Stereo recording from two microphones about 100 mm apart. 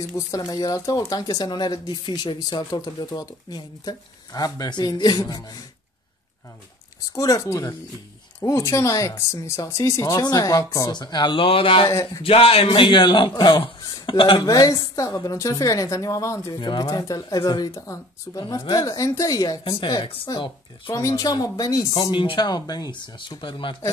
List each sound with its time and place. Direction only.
0.0 s speech: 30° left (ahead or behind)
7.2 s speech: 35° left (ahead or behind)
10.9 s a man's voice: 45° left (ahead or behind)
14.4 s speech: 35° left (ahead or behind)
16.5 s speech: 50° left (ahead or behind)
16.8 s speech: 35° left (ahead or behind)
20.9 s speech: 35° left (ahead or behind); by 22.5 s 55° left (ahead or behind)
22.5 s speech: 40° left (ahead or behind); by 23.8 s 55° left (ahead or behind)